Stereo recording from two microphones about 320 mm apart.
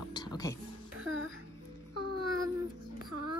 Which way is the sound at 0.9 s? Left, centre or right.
Right.